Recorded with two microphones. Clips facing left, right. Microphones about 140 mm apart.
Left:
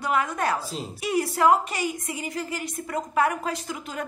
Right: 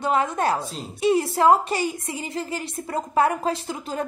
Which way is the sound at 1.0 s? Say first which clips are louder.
Right 4 dB; 25° right (ahead or behind).